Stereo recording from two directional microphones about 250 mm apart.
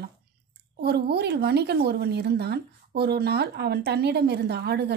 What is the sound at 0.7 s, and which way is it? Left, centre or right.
A woman's voice, right.